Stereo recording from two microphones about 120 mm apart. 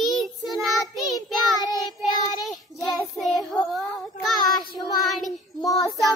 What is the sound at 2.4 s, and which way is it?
Child singing, centre (ahead or behind).